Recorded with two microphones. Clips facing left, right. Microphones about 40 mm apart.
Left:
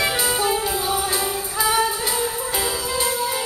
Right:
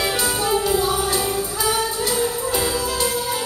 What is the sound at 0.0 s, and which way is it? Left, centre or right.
Music, centre.